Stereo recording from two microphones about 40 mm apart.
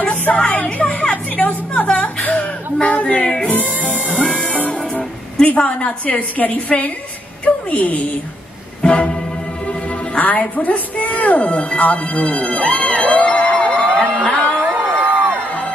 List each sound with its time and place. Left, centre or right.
0.2 s speech: left
3.5 s music: left
6.0 s a woman's voice: left
8.8 s music: left
9.7 s a woman's voice: left
13.9 s a sound: left
14.8 s a sound: right